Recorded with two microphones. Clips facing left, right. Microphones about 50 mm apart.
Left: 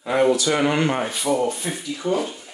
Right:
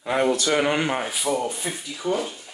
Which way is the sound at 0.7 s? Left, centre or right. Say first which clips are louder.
Left 2 dB; centre.